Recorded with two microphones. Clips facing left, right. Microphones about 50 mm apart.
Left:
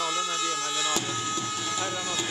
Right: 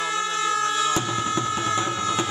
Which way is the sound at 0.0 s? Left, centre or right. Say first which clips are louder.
Right 4 dB; right.